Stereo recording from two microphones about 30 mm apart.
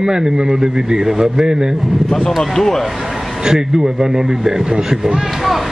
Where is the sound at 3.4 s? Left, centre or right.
Right.